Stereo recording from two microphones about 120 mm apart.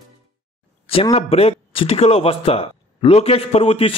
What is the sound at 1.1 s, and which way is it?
Speech, 60° left (ahead or behind).